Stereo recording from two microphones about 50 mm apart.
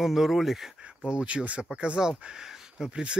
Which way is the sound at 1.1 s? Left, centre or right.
Centre.